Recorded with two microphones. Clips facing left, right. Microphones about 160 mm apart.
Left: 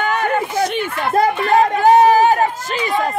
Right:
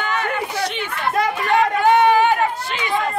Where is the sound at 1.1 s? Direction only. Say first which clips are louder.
Left 5 dB; 35° left (ahead or behind).